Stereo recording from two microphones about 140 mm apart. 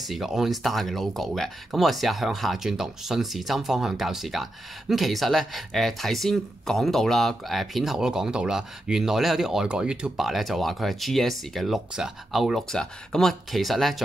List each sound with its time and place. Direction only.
0.0 s speech: centre (ahead or behind)